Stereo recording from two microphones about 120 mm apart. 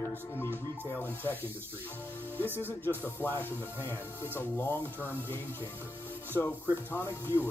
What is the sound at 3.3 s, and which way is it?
Speech, 15° left (ahead or behind).